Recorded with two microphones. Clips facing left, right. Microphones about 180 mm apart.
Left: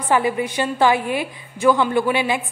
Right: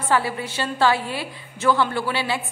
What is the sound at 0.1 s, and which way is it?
A woman's voice, 15° left (ahead or behind).